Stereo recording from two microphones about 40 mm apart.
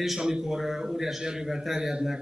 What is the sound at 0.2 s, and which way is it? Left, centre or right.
A man's voice, centre.